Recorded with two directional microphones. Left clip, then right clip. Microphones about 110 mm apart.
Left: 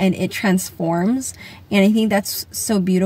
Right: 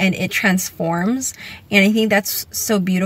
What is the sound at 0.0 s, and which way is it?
A woman's voice, 30° left (ahead or behind).